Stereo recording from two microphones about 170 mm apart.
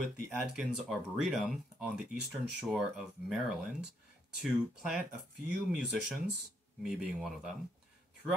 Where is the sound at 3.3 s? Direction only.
5° right (ahead or behind).